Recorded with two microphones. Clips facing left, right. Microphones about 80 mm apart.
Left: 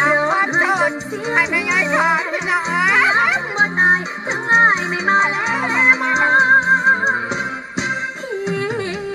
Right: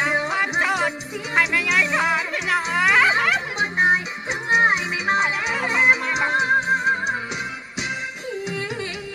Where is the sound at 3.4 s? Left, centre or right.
Left.